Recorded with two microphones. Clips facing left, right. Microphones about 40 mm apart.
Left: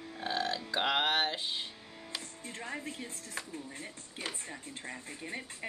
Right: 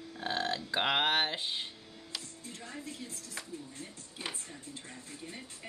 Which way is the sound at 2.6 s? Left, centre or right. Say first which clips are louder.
Left 4 dB; left.